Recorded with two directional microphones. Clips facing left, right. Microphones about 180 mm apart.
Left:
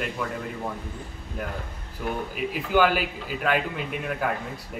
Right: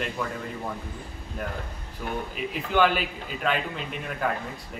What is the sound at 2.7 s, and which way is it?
A man's voice, 5° left (ahead or behind).